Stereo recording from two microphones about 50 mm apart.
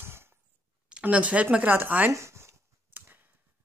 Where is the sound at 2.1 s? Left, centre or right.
Right.